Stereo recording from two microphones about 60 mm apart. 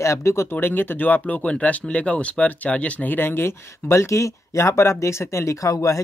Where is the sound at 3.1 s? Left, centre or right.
Left.